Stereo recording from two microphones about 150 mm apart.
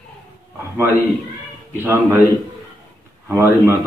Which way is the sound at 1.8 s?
15° right (ahead or behind).